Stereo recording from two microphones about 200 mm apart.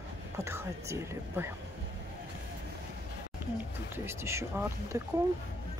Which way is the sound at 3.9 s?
15° right (ahead or behind).